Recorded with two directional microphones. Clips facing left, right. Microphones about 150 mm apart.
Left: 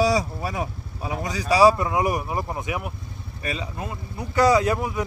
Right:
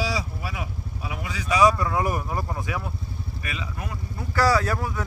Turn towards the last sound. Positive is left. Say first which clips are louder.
# left 4 dB
turn(degrees=20)  # may be behind; listen again after turning